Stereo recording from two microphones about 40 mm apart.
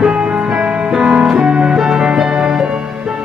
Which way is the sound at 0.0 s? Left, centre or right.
Right.